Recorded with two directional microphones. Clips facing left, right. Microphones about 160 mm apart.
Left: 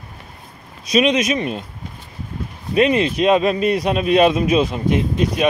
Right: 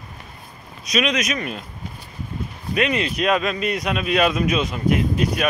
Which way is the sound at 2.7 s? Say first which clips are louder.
Left 6 dB; 30° left (ahead or behind).